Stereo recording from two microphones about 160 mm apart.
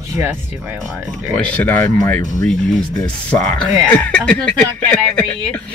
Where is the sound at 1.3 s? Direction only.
5° left (ahead or behind).